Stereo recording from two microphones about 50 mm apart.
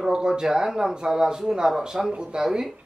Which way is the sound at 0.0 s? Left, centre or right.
Centre.